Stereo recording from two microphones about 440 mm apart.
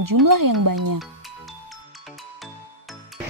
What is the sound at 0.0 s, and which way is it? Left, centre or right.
Speech, right.